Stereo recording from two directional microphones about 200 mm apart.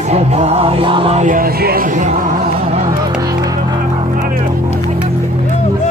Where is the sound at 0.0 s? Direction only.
35° right (ahead or behind).